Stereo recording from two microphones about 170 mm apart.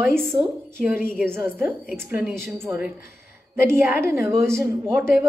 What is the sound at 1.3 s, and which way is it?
A woman's voice, 10° right (ahead or behind).